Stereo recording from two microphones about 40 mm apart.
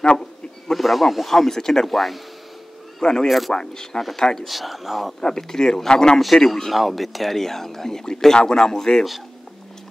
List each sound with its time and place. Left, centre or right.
0.7 s speech: centre
3.0 s speech: centre
3.3 s speech: centre
3.5 s speech: centre
4.5 s speech: centre
5.2 s speech: centre
6.7 s speech: centre